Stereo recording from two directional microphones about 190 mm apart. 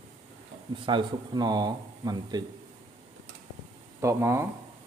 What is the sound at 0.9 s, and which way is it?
Speech, 25° right (ahead or behind).